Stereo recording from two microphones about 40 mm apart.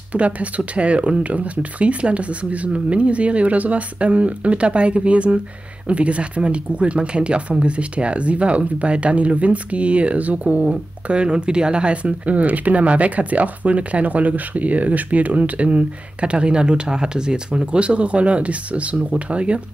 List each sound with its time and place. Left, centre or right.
0.1 s speech: right